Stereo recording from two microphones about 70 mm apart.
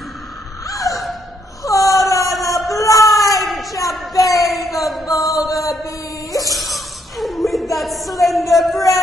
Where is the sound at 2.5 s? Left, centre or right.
Left.